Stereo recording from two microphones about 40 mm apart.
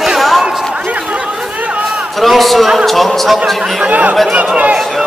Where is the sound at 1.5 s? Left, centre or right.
Right.